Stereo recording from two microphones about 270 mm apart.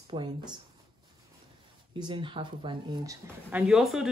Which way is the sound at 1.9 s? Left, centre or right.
Centre.